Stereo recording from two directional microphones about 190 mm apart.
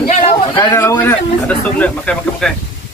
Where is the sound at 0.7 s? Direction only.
15° left (ahead or behind).